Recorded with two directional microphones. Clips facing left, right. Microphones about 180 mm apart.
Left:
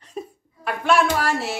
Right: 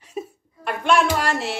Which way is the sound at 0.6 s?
5° left (ahead or behind).